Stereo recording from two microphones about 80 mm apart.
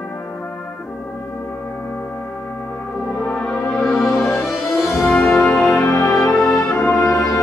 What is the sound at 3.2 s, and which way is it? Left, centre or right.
Brass instrument, centre.